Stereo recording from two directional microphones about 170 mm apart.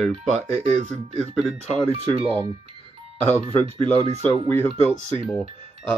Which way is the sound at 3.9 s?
35° right (ahead or behind).